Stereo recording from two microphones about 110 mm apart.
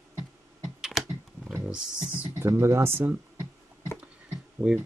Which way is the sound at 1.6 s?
10° right (ahead or behind).